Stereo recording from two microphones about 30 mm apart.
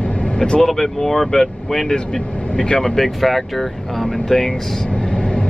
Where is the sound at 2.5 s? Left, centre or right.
Left.